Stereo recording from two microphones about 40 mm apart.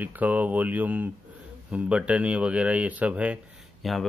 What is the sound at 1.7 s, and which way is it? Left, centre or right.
Speech, right.